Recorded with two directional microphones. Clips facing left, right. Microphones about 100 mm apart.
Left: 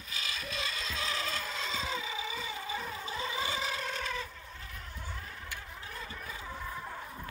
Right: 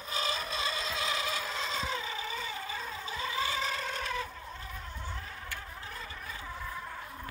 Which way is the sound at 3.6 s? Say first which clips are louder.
Right 1 dB; 5° left (ahead or behind).